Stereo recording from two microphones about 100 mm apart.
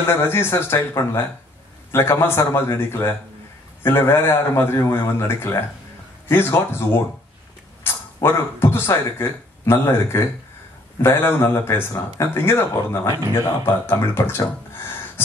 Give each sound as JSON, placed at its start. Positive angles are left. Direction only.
{"t": 0.1, "sound": "a man's voice", "side_deg": 25}
{"t": 15.2, "sound": "gasp", "side_deg": 25}